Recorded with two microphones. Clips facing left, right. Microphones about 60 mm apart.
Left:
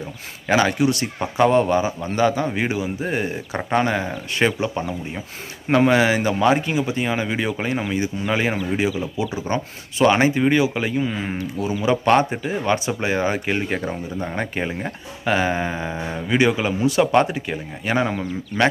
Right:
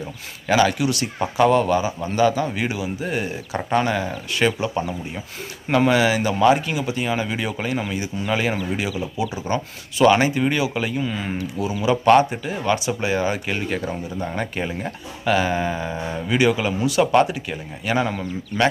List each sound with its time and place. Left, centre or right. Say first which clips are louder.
0.5 s a man's voice: even; left
5.7 s a man's voice: left 1 dB; left